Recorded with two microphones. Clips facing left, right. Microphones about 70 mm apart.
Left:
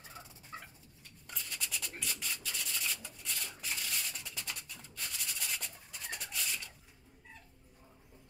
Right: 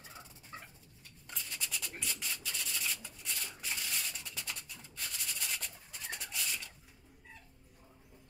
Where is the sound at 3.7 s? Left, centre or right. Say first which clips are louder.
Even; centre.